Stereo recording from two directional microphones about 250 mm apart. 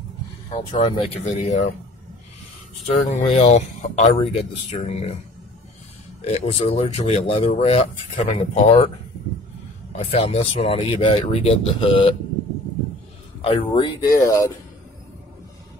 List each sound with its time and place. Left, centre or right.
0.5 s speech: left
3.1 s speech: left
6.2 s speech: left
9.9 s speech: left
13.4 s speech: left